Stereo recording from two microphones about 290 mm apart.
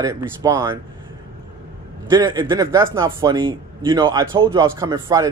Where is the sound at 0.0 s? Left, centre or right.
Centre.